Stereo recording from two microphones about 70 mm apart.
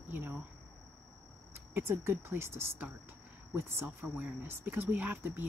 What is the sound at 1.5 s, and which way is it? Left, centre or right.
Speech, right.